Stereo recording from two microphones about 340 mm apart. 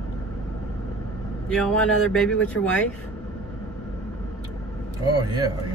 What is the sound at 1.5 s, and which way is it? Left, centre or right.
Speech, centre.